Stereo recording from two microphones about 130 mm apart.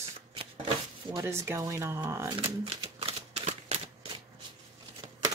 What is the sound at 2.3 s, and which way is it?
Typewriter, 40° right (ahead or behind).